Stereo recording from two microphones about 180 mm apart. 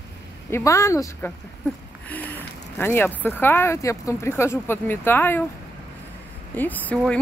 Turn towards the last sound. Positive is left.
turn(degrees=10)  # may be behind; listen again after turning